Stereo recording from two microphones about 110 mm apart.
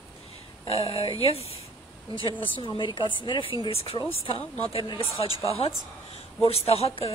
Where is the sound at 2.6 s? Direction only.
45° left (ahead or behind).